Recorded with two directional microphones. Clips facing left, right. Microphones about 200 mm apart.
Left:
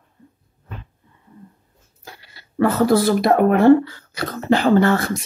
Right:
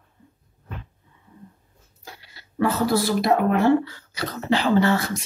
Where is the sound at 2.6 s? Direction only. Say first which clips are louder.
Left 5 dB; 55° left (ahead or behind).